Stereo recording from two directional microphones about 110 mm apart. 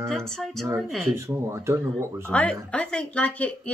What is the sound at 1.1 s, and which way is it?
Speech, 25° right (ahead or behind).